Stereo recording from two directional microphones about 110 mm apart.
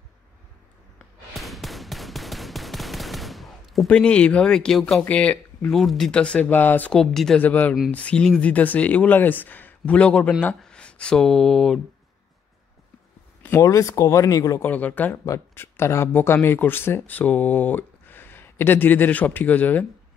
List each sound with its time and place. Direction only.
0.9 s a sound: centre (ahead or behind)
5.8 s speech: centre (ahead or behind)
6.9 s speech: 5° left (ahead or behind)
13.6 s speech: 30° left (ahead or behind)
14.6 s speech: 15° left (ahead or behind)